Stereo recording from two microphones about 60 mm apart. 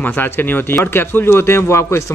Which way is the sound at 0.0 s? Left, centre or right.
Left.